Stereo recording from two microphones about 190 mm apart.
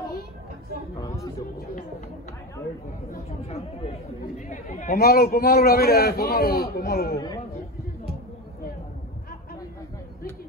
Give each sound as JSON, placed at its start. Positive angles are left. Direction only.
{"t": 0.9, "sound": "a sound", "side_deg": 20}
{"t": 3.4, "sound": "speech", "side_deg": 35}
{"t": 4.9, "sound": "a man's voice", "side_deg": 55}